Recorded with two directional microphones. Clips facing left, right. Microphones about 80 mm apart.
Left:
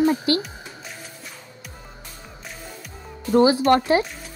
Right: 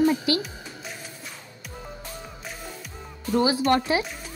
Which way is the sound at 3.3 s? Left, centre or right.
Left.